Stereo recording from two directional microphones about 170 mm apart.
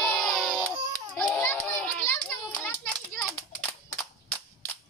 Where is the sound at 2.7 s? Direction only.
5° left (ahead or behind).